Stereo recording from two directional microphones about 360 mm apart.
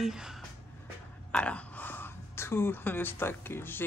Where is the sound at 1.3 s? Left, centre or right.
Centre.